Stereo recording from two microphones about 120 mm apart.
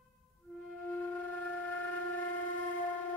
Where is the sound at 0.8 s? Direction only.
15° left (ahead or behind).